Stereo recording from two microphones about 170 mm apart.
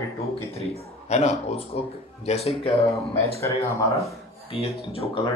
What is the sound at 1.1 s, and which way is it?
Speech, 40° left (ahead or behind).